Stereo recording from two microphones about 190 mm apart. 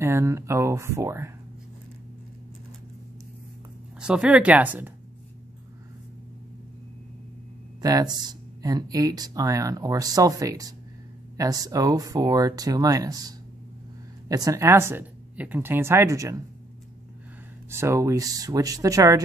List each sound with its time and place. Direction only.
0.0 s a woman's voice: 15° right (ahead or behind)
4.0 s a woman's voice: 5° right (ahead or behind)
7.8 s speech: 20° right (ahead or behind)
14.3 s a woman's voice: 20° right (ahead or behind)
17.6 s a woman's voice: 15° right (ahead or behind)